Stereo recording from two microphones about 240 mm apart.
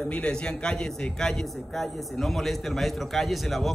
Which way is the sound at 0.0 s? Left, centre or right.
Centre.